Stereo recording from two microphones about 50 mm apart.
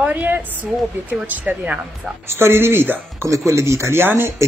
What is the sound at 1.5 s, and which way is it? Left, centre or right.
Speech, centre.